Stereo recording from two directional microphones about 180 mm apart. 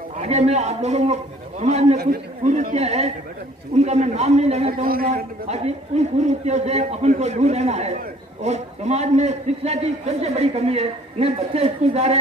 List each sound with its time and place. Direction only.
0.2 s a man's voice: 40° right (ahead or behind)